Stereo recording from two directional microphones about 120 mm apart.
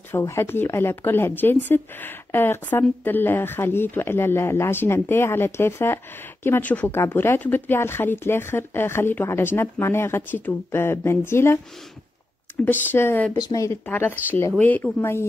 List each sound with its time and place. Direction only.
0.1 s speech: 25° left (ahead or behind)
12.6 s speech: 15° left (ahead or behind)
13.3 s speech: 30° left (ahead or behind)
13.8 s speech: 15° left (ahead or behind)